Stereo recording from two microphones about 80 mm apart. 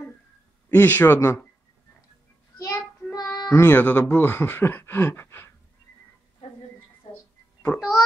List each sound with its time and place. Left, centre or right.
0.7 s speech: left
3.1 s child singing: left
3.7 s speech: left
7.6 s speech: left